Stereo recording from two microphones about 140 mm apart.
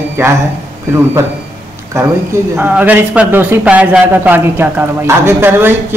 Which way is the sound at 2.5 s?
15° right (ahead or behind).